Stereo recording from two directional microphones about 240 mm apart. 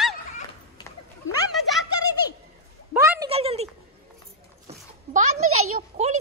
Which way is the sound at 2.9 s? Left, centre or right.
Centre.